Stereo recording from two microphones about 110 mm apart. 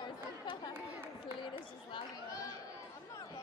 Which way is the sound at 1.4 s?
45° left (ahead or behind).